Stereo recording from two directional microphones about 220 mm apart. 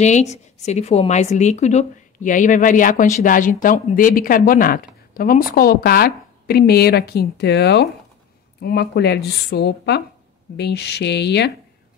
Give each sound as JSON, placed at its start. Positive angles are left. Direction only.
{"t": 0.0, "sound": "a woman's voice", "side_deg": 30}